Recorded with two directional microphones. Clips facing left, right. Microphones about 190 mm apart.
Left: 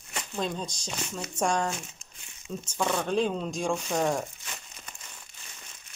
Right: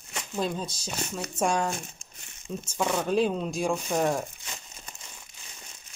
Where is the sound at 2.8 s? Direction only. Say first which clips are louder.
Right 2 dB; 10° right (ahead or behind).